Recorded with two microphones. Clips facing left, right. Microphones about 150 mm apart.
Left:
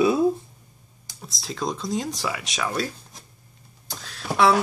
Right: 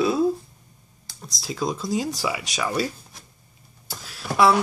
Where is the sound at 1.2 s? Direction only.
Centre (ahead or behind).